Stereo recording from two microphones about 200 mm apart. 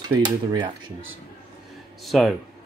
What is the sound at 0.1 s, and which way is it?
Speech, 20° right (ahead or behind).